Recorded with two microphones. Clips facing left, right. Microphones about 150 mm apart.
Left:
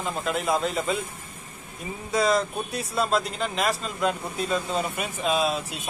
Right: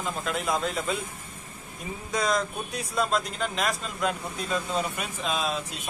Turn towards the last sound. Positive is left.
turn(degrees=5)  # may be behind; listen again after turning